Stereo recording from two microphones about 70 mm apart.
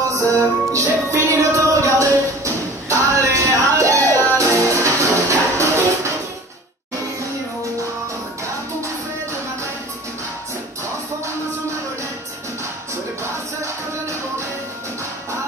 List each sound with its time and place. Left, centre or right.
0.1 s music: right